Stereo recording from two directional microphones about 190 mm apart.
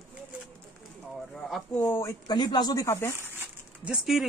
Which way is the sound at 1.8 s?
15° left (ahead or behind).